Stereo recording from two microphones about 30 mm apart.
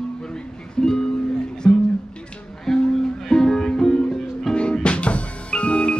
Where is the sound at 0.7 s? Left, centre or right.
Left.